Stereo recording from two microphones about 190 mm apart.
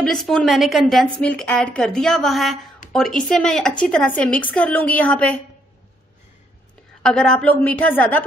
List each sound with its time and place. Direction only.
0.0 s a woman's voice: centre (ahead or behind)
7.0 s a woman's voice: 5° left (ahead or behind)